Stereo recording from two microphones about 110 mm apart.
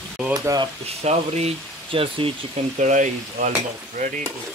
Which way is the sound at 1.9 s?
55° right (ahead or behind).